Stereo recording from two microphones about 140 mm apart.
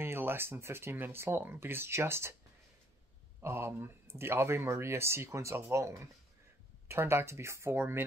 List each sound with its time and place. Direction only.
0.0 s speech: 15° right (ahead or behind)
3.3 s speech: 15° right (ahead or behind)